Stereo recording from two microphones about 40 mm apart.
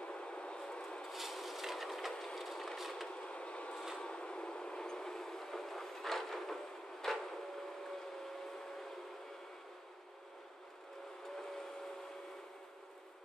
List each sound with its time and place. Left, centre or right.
0.0 s vehicle: left
1.1 s a sound: centre
2.3 s vehicle: centre
3.1 s vehicle: left
4.0 s train: left; by 7.3 s centre